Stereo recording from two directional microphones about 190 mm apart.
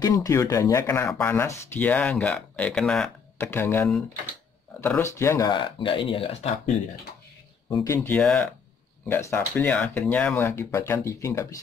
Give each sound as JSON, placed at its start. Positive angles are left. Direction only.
{"t": 0.0, "sound": "speech", "side_deg": 15}
{"t": 7.7, "sound": "speech", "side_deg": 15}